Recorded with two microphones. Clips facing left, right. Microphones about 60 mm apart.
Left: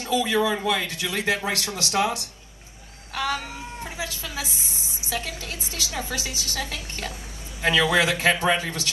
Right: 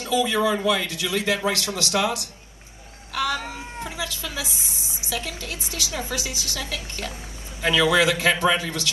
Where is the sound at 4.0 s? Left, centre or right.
Left.